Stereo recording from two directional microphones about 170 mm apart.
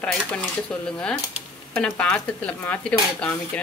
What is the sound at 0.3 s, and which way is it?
A woman's voice, 5° left (ahead or behind).